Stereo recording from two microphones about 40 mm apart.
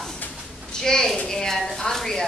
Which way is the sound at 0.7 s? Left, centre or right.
Centre.